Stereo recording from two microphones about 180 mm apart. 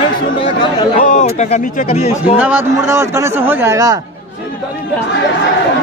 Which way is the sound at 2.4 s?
15° right (ahead or behind).